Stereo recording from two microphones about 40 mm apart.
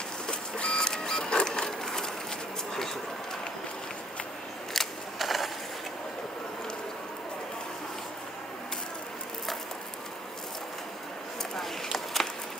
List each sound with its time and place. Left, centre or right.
0.3 s printer: left
4.7 s scissors: centre
11.5 s a sound: centre